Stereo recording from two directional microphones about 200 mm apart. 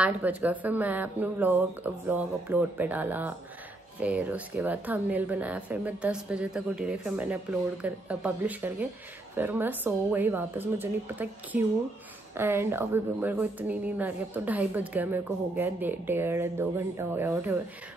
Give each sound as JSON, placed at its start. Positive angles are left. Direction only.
{"t": 0.0, "sound": "speech", "side_deg": -10}